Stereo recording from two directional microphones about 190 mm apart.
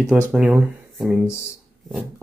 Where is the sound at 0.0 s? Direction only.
5° right (ahead or behind).